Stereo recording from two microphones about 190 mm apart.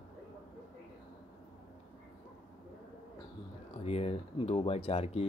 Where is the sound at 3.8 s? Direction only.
30° left (ahead or behind).